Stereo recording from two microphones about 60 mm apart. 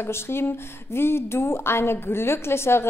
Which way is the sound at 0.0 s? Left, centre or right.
Left.